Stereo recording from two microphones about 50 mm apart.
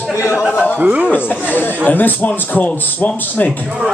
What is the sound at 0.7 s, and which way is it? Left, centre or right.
Speech, right.